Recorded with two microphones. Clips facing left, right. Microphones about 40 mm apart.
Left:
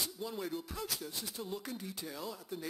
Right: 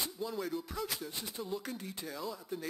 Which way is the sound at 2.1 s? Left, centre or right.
Centre.